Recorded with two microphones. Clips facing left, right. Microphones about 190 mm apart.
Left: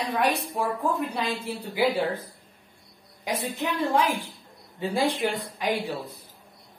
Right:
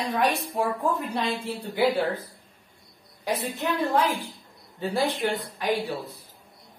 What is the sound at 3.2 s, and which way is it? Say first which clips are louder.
A woman's voice: right 1 dB; 15° left (ahead or behind).